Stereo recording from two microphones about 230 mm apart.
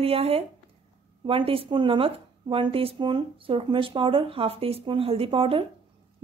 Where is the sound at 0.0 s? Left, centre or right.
Right.